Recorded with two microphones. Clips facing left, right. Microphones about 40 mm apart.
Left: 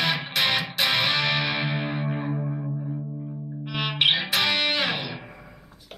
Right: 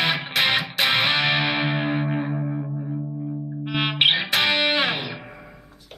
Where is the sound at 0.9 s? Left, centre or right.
Centre.